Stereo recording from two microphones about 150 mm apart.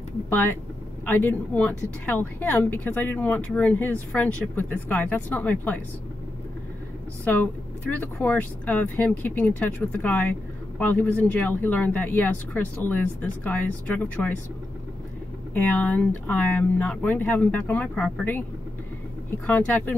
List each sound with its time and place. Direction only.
0.3 s a woman's voice: 15° left (ahead or behind)
7.8 s a woman's voice: 10° left (ahead or behind)
15.5 s a woman's voice: 10° left (ahead or behind)